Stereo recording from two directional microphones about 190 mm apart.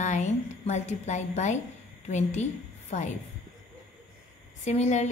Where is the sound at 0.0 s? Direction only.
40° left (ahead or behind).